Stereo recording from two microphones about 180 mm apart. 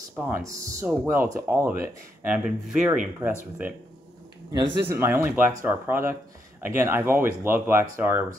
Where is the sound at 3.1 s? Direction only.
10° right (ahead or behind).